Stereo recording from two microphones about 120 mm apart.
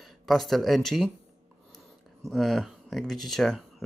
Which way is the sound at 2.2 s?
Centre (ahead or behind).